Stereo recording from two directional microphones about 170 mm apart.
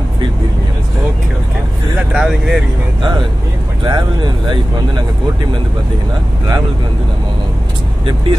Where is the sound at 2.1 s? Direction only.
5° right (ahead or behind).